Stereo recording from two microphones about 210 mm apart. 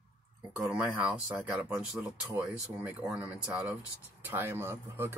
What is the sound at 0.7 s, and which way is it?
Speech, 5° right (ahead or behind).